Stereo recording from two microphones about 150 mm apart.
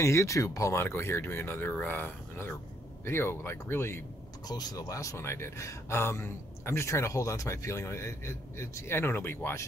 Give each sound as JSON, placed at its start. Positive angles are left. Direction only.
{"t": 0.0, "sound": "speech", "side_deg": 20}